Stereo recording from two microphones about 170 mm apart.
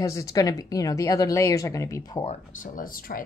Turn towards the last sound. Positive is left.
turn(degrees=55)  # may be behind; listen again after turning